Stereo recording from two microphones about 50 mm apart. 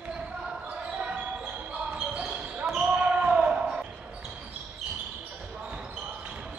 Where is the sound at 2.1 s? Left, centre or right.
Centre.